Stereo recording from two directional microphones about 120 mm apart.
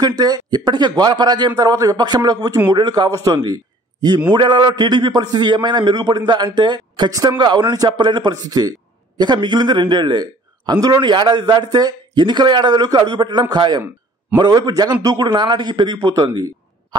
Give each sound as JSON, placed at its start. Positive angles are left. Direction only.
{"t": 0.0, "sound": "a man's voice", "side_deg": -35}
{"t": 3.4, "sound": "a sound", "side_deg": -35}
{"t": 4.3, "sound": "a man's voice", "side_deg": -40}